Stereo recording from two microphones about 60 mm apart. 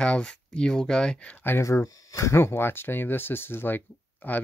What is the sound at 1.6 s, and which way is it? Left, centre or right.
Speech, left.